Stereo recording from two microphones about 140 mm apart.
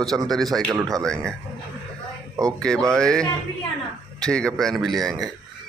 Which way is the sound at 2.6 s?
5° left (ahead or behind).